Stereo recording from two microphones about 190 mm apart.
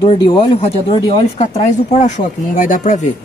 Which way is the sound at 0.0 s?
30° left (ahead or behind).